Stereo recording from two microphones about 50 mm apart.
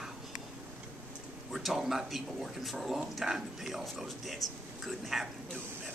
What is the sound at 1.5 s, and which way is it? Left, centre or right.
Speech, centre.